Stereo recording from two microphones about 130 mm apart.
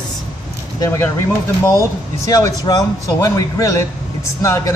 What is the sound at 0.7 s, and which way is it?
A man's voice, 25° left (ahead or behind).